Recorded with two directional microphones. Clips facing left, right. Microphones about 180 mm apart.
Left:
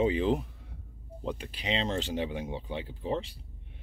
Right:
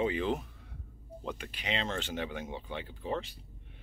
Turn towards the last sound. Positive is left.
turn(degrees=30)  # may be behind; listen again after turning